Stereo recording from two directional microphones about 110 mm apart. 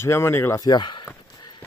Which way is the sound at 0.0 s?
25° left (ahead or behind).